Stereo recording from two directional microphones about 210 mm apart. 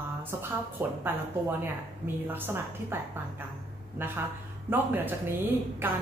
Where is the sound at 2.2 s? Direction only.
10° right (ahead or behind).